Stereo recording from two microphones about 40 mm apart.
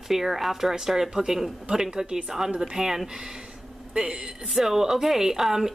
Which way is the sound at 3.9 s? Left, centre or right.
Right.